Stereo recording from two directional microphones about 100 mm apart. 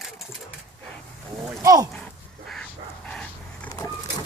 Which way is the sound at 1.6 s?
35° right (ahead or behind).